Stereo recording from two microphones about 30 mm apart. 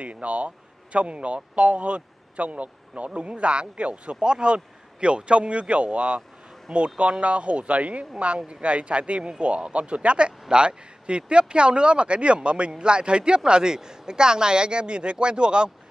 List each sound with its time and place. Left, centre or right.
0.0 s speech: right
4.2 s speech: right
8.4 s speech: right